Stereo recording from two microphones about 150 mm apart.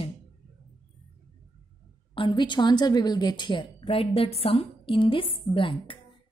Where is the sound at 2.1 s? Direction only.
30° left (ahead or behind).